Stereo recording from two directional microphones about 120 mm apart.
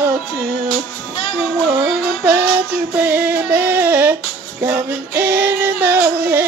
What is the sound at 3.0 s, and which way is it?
Female singing, 15° right (ahead or behind).